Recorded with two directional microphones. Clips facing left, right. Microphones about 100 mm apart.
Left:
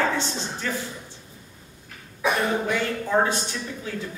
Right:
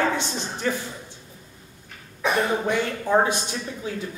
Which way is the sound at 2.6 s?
20° right (ahead or behind).